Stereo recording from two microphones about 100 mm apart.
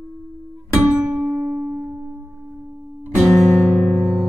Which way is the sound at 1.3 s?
15° right (ahead or behind).